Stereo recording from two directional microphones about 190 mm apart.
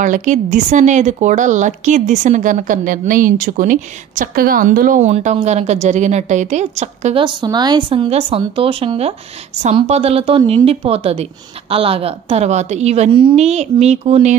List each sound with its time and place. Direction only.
0.0 s a woman's voice: 40° right (ahead or behind)